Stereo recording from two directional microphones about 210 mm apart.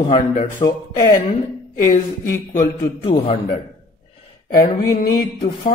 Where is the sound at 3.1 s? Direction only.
25° left (ahead or behind).